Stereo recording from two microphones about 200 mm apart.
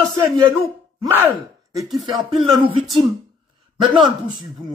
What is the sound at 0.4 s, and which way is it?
Speech, 20° right (ahead or behind).